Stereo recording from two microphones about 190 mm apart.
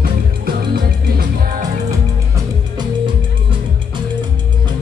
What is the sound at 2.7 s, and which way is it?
Music, 25° right (ahead or behind).